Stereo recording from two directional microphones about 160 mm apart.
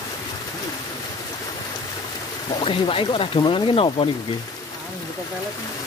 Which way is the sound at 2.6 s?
35° left (ahead or behind).